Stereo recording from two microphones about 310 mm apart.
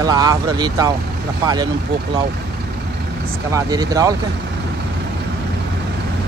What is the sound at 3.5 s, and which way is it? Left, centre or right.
Speech, centre.